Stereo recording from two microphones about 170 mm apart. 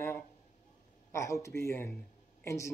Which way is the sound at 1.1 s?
15° left (ahead or behind).